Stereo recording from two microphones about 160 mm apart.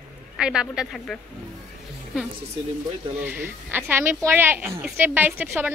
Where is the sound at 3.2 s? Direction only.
15° right (ahead or behind).